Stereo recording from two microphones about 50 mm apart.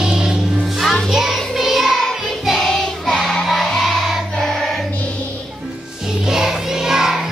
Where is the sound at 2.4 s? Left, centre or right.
Centre.